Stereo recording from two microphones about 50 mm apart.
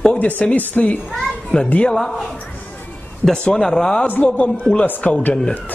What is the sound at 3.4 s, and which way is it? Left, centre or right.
Speech, centre.